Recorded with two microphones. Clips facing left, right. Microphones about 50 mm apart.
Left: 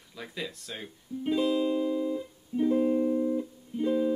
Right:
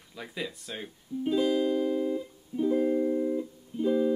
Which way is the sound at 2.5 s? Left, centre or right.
Left.